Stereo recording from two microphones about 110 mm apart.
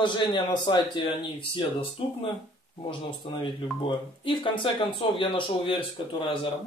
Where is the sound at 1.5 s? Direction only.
55° left (ahead or behind).